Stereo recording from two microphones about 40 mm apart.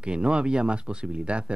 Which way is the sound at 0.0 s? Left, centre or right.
Right.